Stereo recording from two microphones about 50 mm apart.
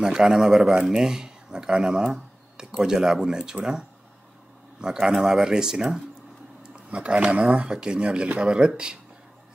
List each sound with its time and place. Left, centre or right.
0.0 s speech: centre
4.7 s speech: centre